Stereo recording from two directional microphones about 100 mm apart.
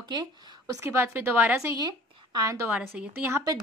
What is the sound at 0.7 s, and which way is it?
A woman's voice, 25° right (ahead or behind).